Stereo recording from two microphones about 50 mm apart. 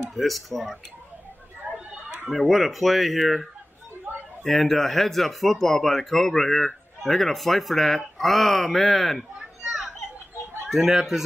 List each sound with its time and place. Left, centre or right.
0.1 s speech: centre
1.7 s a sound: right
2.0 s speech: centre
4.5 s speech: centre
9.7 s children playing: centre
10.7 s speech: centre